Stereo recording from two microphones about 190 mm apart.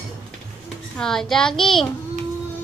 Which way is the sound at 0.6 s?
Centre (ahead or behind).